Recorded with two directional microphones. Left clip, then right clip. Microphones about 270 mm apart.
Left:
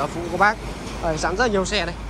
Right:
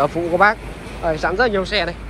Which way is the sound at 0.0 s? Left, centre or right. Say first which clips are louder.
Right 5 dB; centre.